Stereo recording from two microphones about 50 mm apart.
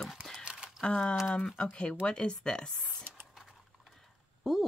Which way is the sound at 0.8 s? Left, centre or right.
Left.